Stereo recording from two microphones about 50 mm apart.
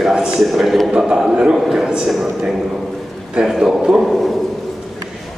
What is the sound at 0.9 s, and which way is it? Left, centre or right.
Speech, centre.